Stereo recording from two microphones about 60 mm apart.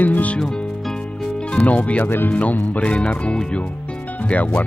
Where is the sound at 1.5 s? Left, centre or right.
Left.